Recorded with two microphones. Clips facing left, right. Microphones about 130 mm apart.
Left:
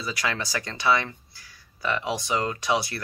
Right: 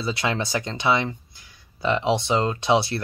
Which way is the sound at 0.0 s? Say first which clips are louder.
Right 4 dB; 25° right (ahead or behind).